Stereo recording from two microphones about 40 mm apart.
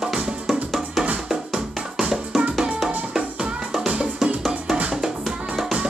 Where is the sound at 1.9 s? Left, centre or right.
Centre.